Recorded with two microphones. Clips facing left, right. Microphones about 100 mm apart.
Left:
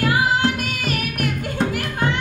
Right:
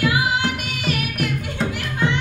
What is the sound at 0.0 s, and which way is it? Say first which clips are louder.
Music: left 2 dB; 45° left (ahead or behind).